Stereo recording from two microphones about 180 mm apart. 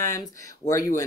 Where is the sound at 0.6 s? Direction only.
40° left (ahead or behind).